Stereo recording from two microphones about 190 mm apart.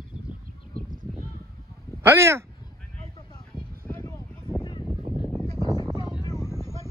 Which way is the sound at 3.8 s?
10° left (ahead or behind).